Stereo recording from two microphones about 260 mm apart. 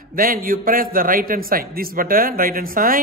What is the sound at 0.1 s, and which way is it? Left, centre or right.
A man's voice, right.